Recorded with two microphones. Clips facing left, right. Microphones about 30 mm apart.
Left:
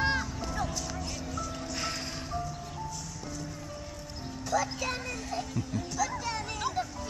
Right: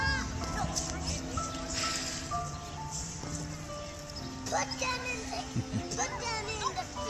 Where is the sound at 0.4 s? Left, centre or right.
Centre.